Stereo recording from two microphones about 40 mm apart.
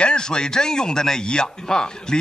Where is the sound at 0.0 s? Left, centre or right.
Left.